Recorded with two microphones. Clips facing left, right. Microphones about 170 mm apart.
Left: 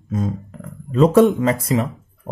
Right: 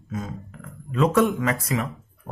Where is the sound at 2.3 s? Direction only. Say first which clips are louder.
Left 8 dB; 40° left (ahead or behind).